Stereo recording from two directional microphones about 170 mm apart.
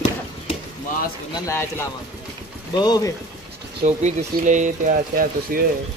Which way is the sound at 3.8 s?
45° right (ahead or behind).